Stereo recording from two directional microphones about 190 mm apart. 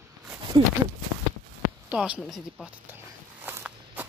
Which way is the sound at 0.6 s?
25° right (ahead or behind).